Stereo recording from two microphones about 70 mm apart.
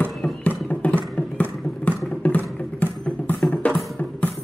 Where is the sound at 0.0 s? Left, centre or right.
Centre.